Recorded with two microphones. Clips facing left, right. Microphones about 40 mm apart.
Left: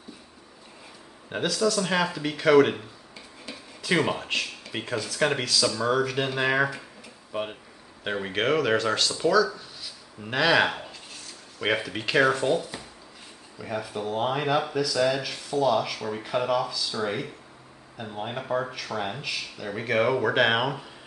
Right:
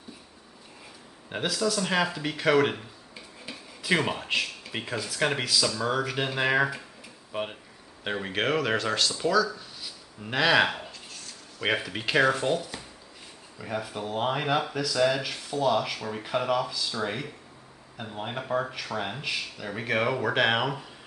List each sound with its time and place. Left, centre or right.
1.3 s speech: centre
9.2 s a sound: centre
11.6 s speech: centre
13.6 s speech: centre